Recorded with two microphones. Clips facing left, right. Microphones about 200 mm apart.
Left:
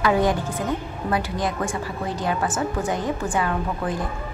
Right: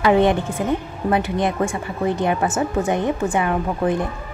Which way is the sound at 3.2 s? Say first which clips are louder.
Right 4 dB; 20° right (ahead or behind).